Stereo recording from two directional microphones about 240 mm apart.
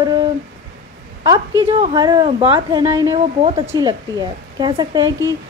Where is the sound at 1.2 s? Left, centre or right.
Centre.